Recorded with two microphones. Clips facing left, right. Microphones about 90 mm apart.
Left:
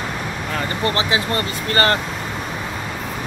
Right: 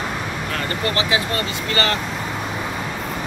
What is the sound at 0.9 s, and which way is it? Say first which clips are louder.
Speech: left 1 dB; 35° left (ahead or behind).